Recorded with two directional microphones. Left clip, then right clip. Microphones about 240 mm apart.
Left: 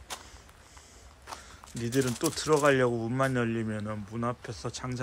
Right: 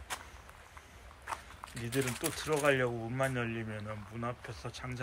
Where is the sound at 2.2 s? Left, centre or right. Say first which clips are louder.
Left 6 dB; centre.